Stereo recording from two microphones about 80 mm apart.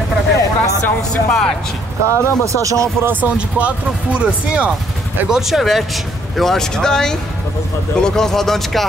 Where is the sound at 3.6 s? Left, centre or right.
Centre.